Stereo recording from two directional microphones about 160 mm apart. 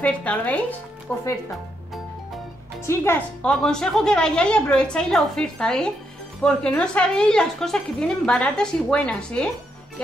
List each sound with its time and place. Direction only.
0.0 s speech: 10° left (ahead or behind)
2.9 s speech: 15° left (ahead or behind)
3.4 s a woman's voice: 5° left (ahead or behind)